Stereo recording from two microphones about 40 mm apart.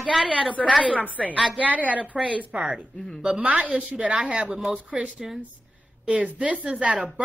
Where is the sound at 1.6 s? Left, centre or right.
Right.